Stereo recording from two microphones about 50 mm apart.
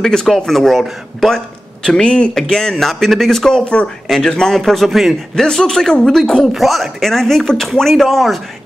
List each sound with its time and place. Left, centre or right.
0.0 s speech: centre
5.3 s speech: centre